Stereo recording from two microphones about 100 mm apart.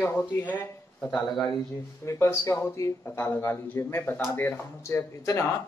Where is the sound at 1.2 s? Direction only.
Centre (ahead or behind).